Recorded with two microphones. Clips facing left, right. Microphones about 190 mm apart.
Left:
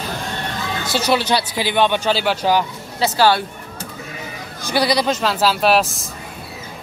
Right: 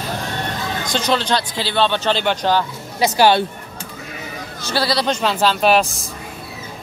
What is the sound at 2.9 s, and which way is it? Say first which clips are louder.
Speech: right 2 dB; 15° right (ahead or behind).